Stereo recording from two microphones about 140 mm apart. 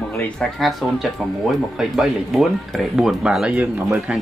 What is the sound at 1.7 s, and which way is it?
Speech, centre (ahead or behind).